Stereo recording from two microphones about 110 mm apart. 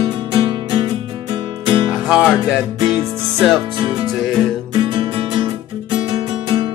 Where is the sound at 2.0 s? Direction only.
5° right (ahead or behind).